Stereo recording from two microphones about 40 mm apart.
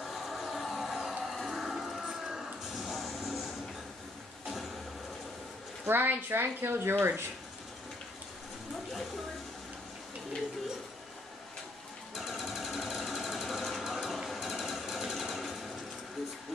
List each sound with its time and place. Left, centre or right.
0.0 s music: centre
5.9 s speech: right
12.1 s sewing machine: centre